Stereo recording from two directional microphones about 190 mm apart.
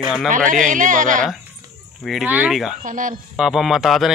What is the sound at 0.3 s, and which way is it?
Speech, 45° right (ahead or behind).